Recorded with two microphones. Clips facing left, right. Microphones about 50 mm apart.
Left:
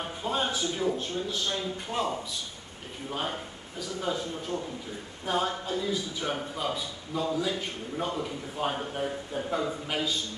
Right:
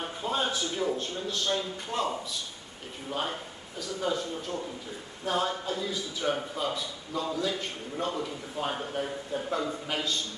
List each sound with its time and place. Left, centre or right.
0.0 s a man's voice: centre